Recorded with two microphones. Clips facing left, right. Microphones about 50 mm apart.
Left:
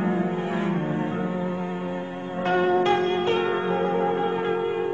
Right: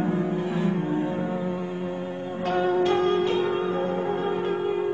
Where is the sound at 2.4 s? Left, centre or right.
Left.